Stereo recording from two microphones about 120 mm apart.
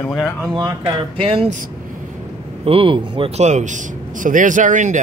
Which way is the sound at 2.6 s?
50° right (ahead or behind).